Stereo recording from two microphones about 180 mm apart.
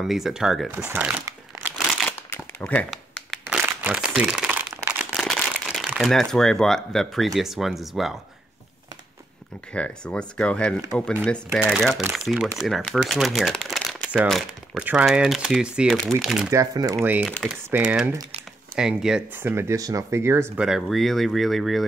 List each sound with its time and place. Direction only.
0.0 s speech: centre (ahead or behind)
2.0 s crumpling: 10° left (ahead or behind); by 4.9 s 10° right (ahead or behind)
5.1 s speech: centre (ahead or behind)
9.7 s speech: 5° left (ahead or behind)
16.4 s speech: 20° right (ahead or behind)
20.6 s speech: centre (ahead or behind)